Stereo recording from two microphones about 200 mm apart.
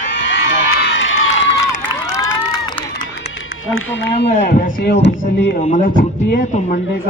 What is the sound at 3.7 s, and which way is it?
Speech, 70° left (ahead or behind).